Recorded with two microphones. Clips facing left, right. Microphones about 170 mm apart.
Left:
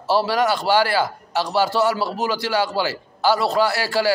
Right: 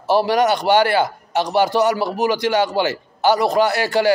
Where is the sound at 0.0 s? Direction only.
20° right (ahead or behind).